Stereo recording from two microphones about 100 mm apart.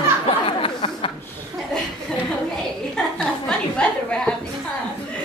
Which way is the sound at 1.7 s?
5° left (ahead or behind).